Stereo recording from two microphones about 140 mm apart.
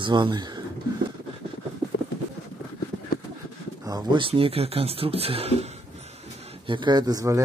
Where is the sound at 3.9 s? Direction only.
30° right (ahead or behind).